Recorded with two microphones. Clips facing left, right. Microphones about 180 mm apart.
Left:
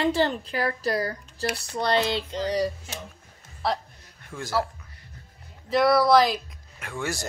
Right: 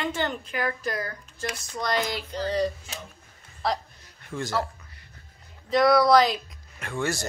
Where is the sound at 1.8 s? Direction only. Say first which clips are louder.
Left 4 dB; 30° left (ahead or behind); by 2.7 s 15° left (ahead or behind).